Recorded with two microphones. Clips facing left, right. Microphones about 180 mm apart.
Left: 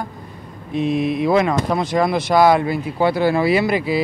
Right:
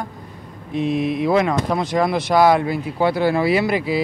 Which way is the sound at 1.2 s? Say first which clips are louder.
Left 1 dB; 15° left (ahead or behind).